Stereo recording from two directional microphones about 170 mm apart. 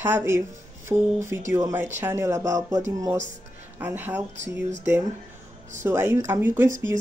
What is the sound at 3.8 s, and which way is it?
Speech, 10° right (ahead or behind).